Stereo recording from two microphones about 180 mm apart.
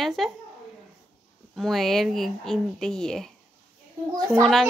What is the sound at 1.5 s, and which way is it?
Speech, centre (ahead or behind).